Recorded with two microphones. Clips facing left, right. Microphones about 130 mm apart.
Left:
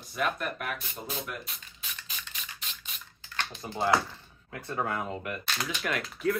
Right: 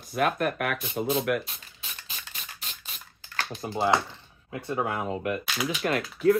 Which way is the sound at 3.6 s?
25° right (ahead or behind).